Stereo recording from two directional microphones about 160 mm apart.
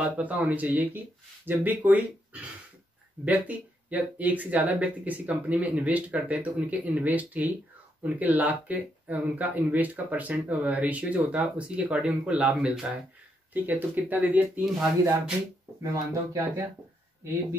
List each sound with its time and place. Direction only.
0.0 s speech: 10° right (ahead or behind)
15.8 s speech: 20° right (ahead or behind)